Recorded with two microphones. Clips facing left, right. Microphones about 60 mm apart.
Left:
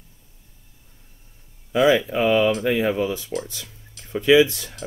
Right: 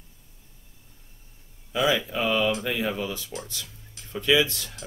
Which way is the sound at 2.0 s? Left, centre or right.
Left.